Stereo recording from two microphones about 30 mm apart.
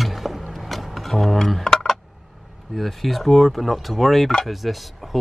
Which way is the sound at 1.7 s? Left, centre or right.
Centre.